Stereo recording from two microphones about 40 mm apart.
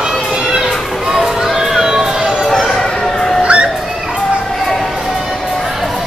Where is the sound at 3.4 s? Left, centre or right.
Right.